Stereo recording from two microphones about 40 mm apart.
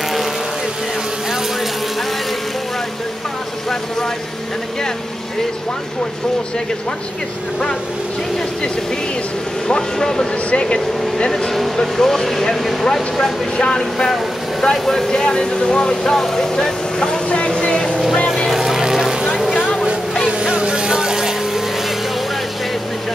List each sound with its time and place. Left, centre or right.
9.7 s speech: centre
10.5 s speech: left
11.3 s speech: centre
17.3 s a sound: left
18.3 s vehicle: centre
18.6 s vehicle: centre
20.5 s vehicle: right